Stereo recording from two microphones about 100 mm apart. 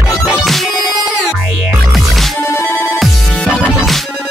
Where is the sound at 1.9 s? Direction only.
Centre (ahead or behind).